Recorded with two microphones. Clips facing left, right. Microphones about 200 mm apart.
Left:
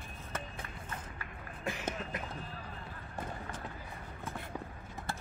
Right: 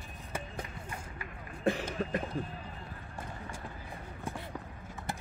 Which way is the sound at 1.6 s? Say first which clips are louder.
Right 7 dB; 35° right (ahead or behind).